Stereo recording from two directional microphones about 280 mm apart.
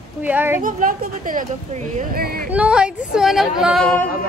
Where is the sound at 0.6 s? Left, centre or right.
Right.